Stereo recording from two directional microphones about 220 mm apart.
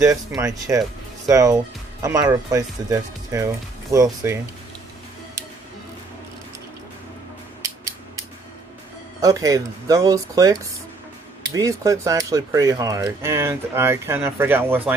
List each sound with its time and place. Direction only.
0.4 s speech: 15° right (ahead or behind)
9.2 s speech: 15° right (ahead or behind)